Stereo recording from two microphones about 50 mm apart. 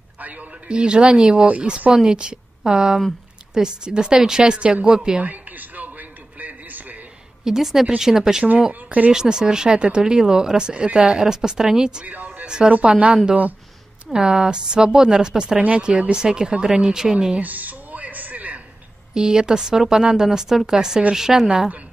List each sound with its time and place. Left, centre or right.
0.2 s a man's voice: right
0.7 s a woman's voice: centre
5.2 s a sound: right
7.4 s speech: centre
17.4 s a sound: right
19.1 s speech: centre